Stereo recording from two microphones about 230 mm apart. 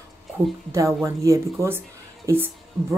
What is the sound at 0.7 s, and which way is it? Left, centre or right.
A woman's voice, centre.